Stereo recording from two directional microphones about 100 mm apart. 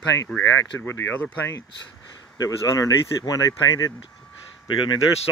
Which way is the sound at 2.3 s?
35° left (ahead or behind).